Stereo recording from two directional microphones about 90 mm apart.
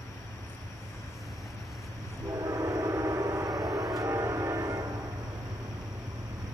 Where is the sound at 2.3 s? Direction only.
40° right (ahead or behind).